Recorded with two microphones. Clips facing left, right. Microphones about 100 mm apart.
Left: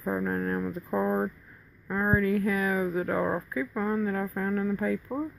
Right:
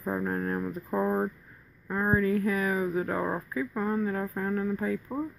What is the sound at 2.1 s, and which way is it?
Speech, 35° right (ahead or behind).